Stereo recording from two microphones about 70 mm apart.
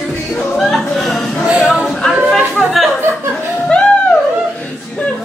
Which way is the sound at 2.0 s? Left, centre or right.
Centre.